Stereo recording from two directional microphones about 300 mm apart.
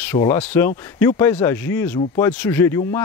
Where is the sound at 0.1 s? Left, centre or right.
Centre.